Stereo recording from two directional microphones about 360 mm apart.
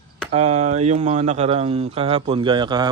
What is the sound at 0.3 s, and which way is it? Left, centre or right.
Speech, centre.